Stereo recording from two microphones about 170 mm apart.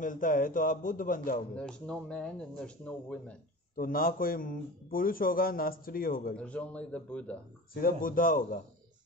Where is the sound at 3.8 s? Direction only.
55° left (ahead or behind).